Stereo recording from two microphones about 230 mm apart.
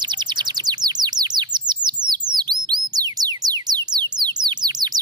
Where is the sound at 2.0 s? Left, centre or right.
Right.